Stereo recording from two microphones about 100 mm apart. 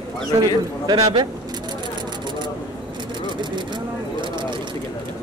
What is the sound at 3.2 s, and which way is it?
Vehicle, 50° right (ahead or behind).